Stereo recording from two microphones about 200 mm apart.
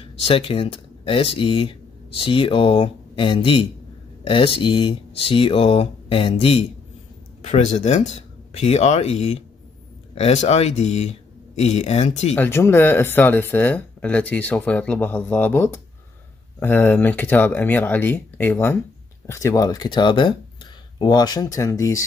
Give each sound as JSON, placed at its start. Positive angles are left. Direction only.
{"t": 0.2, "sound": "speech", "side_deg": 30}
{"t": 12.4, "sound": "speech", "side_deg": 10}